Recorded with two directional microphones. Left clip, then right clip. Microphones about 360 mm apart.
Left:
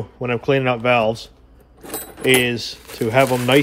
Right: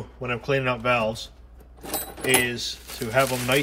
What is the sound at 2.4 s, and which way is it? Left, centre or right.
Speech, centre.